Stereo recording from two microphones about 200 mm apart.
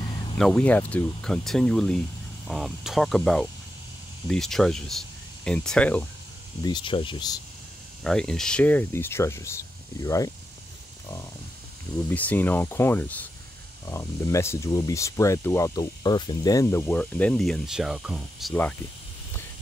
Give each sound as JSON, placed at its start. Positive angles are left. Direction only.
{"t": 0.4, "sound": "speech", "side_deg": 5}
{"t": 6.6, "sound": "speech", "side_deg": 25}
{"t": 8.0, "sound": "speech", "side_deg": 5}
{"t": 12.1, "sound": "speech", "side_deg": 10}
{"t": 18.5, "sound": "speech", "side_deg": 5}